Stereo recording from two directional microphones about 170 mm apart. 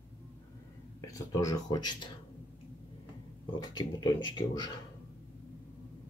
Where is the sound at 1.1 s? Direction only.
20° left (ahead or behind).